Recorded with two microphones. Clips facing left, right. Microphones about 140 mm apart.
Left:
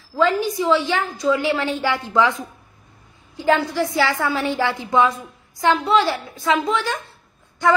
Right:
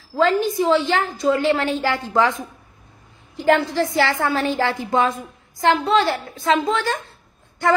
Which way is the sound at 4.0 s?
25° right (ahead or behind).